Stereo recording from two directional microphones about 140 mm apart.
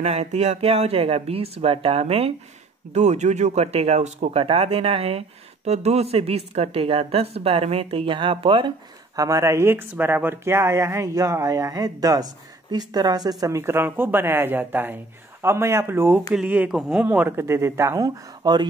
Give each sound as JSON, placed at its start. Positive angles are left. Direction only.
{"t": 0.0, "sound": "a woman's voice", "side_deg": -50}